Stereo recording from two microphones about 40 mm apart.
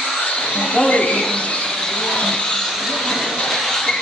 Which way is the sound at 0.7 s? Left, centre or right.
Left.